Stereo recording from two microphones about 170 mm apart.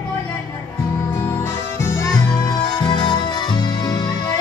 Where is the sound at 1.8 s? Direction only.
15° left (ahead or behind).